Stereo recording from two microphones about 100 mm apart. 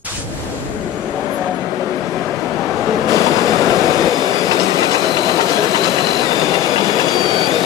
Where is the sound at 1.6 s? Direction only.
30° left (ahead or behind).